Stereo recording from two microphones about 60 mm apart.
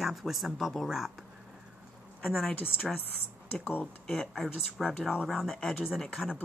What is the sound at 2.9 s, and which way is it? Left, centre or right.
Speech, centre.